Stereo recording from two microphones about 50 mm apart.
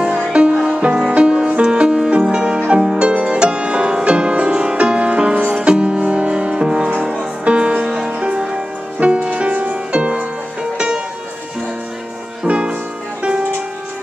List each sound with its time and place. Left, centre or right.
0.0 s music: centre
3.1 s music: right
12.4 s music: right